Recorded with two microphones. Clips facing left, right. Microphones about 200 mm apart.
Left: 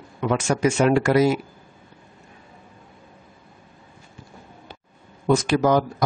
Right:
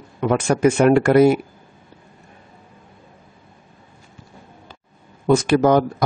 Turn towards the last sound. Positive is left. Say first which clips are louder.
# right 4 dB
turn(degrees=-60)  # may be behind; listen again after turning